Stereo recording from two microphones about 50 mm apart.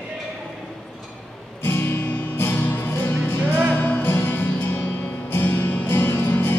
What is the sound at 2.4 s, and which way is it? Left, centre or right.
Music, left.